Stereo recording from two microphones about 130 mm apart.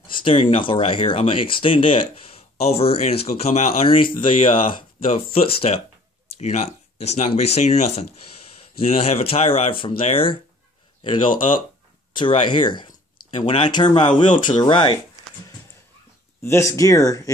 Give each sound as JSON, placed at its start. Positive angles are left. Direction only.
{"t": 0.1, "sound": "a sound", "side_deg": 45}
{"t": 0.6, "sound": "speech", "side_deg": 40}
{"t": 12.1, "sound": "speech", "side_deg": 40}
{"t": 16.4, "sound": "speech", "side_deg": 20}